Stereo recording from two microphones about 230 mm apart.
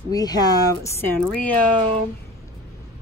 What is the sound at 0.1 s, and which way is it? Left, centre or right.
Speech, centre.